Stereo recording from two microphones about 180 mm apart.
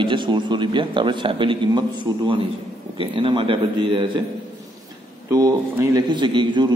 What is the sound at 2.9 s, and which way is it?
A man's voice, 30° right (ahead or behind).